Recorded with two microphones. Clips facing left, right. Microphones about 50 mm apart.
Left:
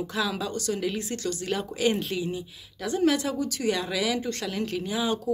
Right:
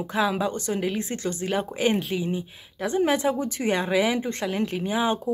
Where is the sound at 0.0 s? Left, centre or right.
Right.